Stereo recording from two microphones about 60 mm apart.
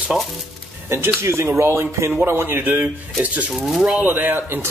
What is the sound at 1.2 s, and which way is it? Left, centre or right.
Speech, right.